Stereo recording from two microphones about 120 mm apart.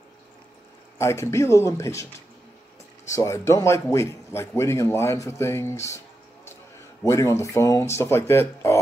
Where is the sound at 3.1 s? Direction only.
25° left (ahead or behind).